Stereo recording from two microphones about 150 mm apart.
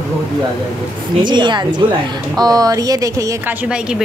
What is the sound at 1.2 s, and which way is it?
A woman's voice, 30° right (ahead or behind).